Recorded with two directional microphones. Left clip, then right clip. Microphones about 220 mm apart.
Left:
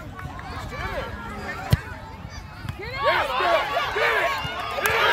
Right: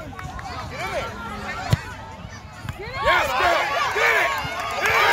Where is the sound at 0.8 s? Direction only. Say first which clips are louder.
Right 3 dB; 50° right (ahead or behind).